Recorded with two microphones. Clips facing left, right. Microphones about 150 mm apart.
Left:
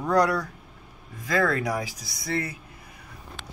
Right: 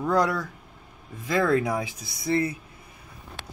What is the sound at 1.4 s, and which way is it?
Speech, 25° right (ahead or behind).